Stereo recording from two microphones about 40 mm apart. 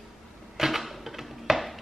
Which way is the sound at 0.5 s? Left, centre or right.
Centre.